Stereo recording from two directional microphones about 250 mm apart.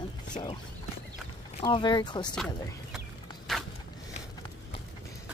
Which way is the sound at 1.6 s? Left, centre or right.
Centre.